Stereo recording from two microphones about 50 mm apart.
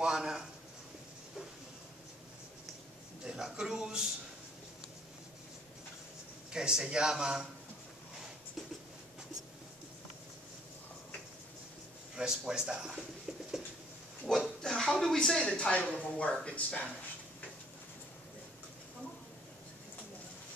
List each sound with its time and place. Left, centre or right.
0.0 s a sound: centre
3.3 s a sound: centre
6.5 s speech: centre
12.2 s speech: centre
14.2 s speech: centre
14.6 s speech: centre
15.4 s speech: left